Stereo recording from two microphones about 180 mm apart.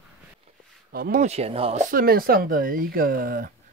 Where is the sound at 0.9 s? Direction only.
55° right (ahead or behind).